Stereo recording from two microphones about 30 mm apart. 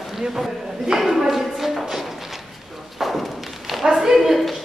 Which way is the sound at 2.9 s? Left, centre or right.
Centre.